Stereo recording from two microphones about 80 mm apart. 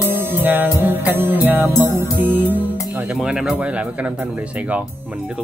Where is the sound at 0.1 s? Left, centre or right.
Right.